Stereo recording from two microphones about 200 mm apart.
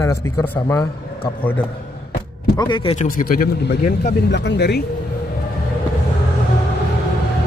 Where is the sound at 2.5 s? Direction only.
25° left (ahead or behind).